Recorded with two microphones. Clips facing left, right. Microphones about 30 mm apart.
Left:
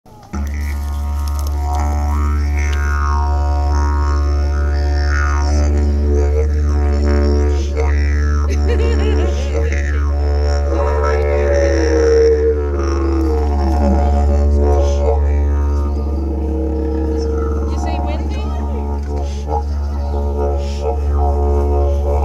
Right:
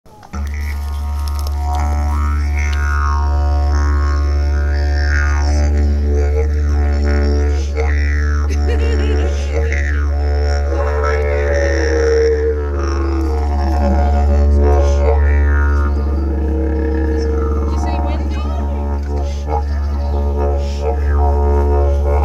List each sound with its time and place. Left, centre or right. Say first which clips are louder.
1.8 s music: left 1 dB; centre
11.2 s didgeridoo: left 2 dB; centre
13.3 s music: left 2 dB; centre
14.8 s music: right 1 dB; centre
16.6 s a sound: right 1 dB; right
16.9 s a sound: right 1 dB; right
17.7 s vehicle: right 1 dB; centre
19.5 s music: even; right
21.2 s music: right 1 dB; centre